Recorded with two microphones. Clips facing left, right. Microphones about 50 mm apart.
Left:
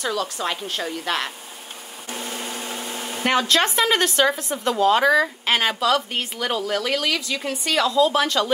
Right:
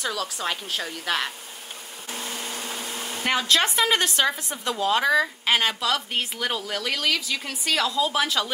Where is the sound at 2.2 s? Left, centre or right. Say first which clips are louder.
Left 2 dB; centre.